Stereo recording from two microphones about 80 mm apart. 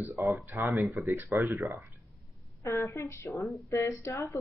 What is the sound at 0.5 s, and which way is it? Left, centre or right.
Speech, right.